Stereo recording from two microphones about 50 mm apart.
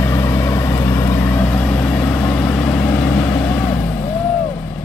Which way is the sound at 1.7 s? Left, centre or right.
Left.